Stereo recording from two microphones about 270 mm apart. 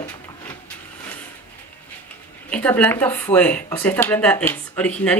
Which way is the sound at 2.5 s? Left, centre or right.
Centre.